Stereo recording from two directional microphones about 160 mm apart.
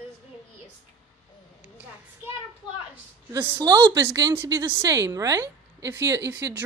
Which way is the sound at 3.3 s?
30° right (ahead or behind).